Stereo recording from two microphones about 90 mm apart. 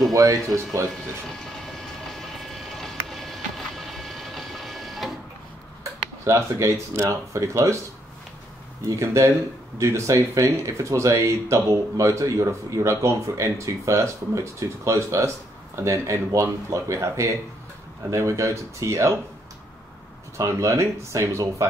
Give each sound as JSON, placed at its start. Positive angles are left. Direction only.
{"t": 0.1, "sound": "speech", "side_deg": -40}
{"t": 1.3, "sound": "vehicle", "side_deg": 5}
{"t": 6.2, "sound": "speech", "side_deg": -30}
{"t": 8.8, "sound": "speech", "side_deg": -35}
{"t": 20.3, "sound": "speech", "side_deg": -35}